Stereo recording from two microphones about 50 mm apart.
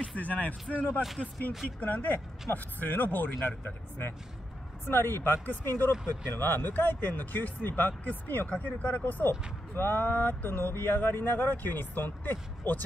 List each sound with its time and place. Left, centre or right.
0.0 s speech: left
9.8 s speech: left
10.0 s speech: left